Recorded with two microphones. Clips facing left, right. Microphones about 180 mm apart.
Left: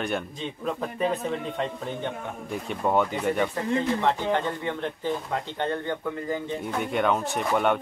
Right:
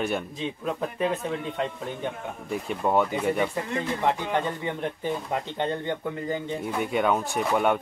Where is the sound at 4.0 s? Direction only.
15° right (ahead or behind).